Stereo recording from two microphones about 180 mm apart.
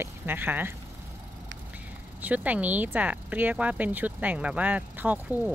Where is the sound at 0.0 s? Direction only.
10° right (ahead or behind).